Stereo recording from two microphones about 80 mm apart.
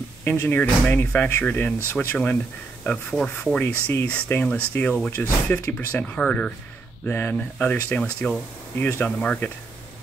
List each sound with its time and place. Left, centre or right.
0.2 s speech: left; by 3.5 s centre
3.5 s speech: left
8.0 s speech: centre